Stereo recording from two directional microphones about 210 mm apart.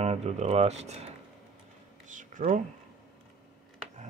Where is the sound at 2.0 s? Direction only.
35° right (ahead or behind).